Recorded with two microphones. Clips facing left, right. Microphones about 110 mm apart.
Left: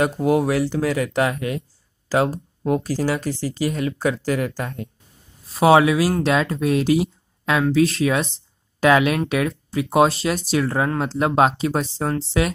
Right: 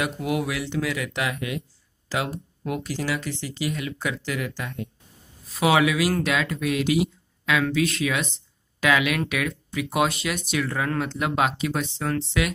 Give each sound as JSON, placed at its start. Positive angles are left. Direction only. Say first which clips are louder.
{"t": 0.0, "sound": "speech", "louder": "left 7 dB", "side_deg": 35}